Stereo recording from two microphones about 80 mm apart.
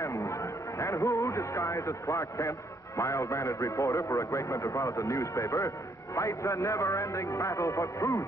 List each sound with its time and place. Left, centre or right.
0.0 s a man's voice: left